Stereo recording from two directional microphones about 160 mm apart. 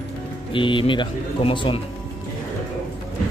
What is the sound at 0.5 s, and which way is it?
Speech, 30° left (ahead or behind).